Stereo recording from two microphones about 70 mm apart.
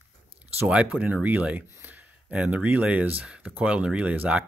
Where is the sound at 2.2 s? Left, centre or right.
Centre.